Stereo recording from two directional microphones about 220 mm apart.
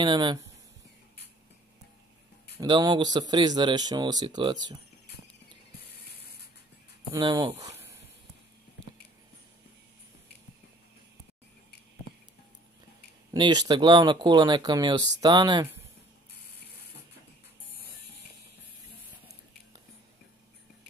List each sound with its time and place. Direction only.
0.0 s speech: 20° right (ahead or behind)
2.6 s speech: 20° right (ahead or behind)
7.2 s speech: 20° right (ahead or behind)
13.3 s speech: 20° right (ahead or behind)